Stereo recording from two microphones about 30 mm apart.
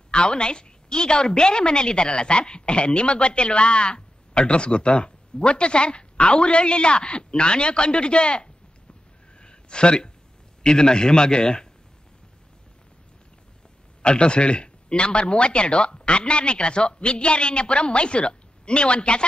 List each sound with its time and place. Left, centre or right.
0.1 s a woman's voice: left
9.4 s a sound: left
10.6 s a man's voice: left
14.0 s a woman's voice: left